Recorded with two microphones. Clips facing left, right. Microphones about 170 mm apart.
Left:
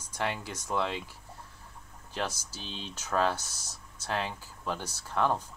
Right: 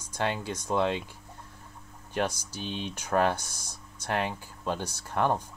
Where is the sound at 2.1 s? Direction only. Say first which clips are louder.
Right 5 dB; 15° right (ahead or behind).